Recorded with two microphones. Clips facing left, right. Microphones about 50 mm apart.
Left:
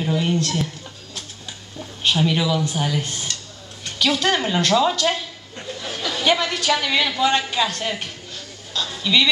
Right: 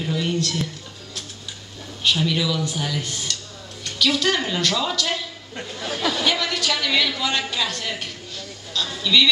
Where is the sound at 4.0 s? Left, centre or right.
Left.